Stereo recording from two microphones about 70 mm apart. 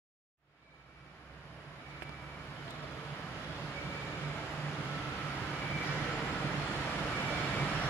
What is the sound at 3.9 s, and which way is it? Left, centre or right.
Vehicle, left.